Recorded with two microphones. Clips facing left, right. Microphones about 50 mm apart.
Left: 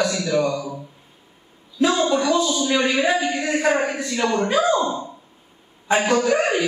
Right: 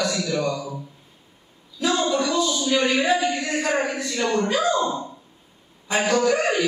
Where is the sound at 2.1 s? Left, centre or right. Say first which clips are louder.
Left 3 dB; left.